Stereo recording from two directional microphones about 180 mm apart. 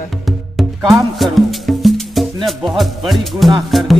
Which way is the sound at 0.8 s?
20° right (ahead or behind).